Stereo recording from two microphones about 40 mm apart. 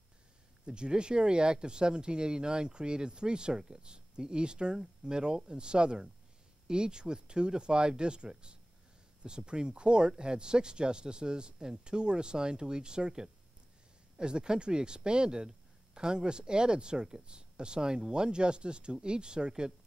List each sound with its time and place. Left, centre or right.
0.7 s speech: right